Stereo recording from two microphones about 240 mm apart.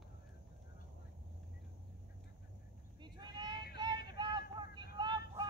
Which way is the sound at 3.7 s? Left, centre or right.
Centre.